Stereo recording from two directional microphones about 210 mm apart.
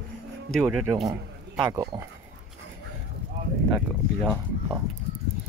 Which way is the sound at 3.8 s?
Centre (ahead or behind).